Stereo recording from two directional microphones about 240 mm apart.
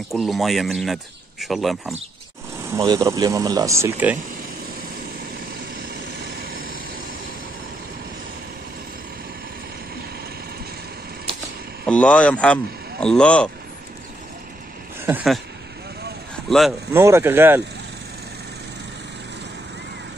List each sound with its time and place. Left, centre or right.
0.1 s speech: centre
2.7 s speech: centre
6.4 s vehicle: right
11.8 s speech: centre
15.0 s speech: centre
16.4 s speech: centre
17.0 s speech: centre